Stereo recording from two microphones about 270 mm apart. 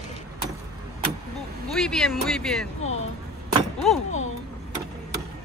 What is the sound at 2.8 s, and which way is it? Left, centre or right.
Vehicle, left.